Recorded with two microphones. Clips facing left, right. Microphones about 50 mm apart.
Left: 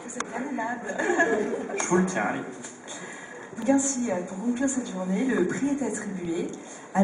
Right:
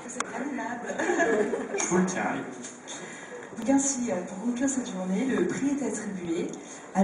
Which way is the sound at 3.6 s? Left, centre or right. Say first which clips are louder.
Left 2 dB; centre.